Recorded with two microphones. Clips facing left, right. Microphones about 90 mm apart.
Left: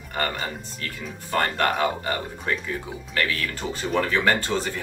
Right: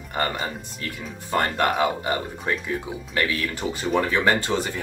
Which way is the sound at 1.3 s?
15° right (ahead or behind).